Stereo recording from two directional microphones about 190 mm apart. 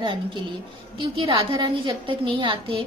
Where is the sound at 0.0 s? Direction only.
25° right (ahead or behind).